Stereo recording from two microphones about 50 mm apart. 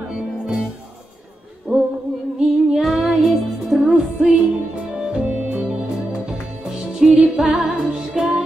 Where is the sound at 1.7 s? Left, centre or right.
Centre.